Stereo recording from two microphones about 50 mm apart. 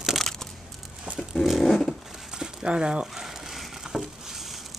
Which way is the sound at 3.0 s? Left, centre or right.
Centre.